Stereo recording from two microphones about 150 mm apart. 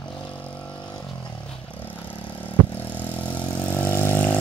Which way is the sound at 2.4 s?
10° left (ahead or behind).